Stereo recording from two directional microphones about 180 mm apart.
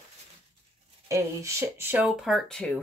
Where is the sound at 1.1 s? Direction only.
15° right (ahead or behind); by 2.8 s 5° left (ahead or behind).